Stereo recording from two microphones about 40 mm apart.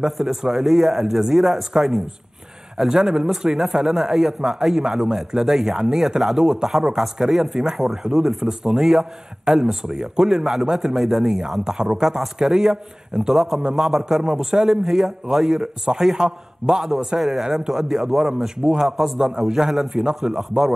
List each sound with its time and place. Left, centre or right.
0.0 s a man's voice: centre
7.5 s speech: right
7.9 s a man's voice: centre
17.2 s a man's voice: centre